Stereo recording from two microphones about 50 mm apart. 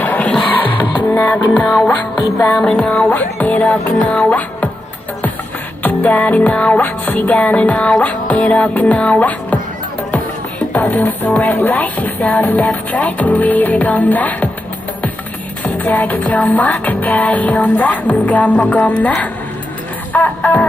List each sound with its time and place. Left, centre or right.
0.0 s music: left
5.8 s music: left
10.7 s music: left
15.6 s music: left